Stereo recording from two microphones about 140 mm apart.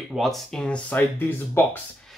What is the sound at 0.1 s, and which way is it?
Speech, centre (ahead or behind).